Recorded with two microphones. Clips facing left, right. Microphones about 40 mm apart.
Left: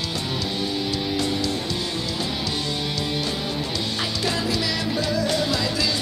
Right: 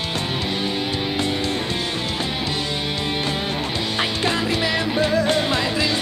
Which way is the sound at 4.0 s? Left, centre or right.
Right.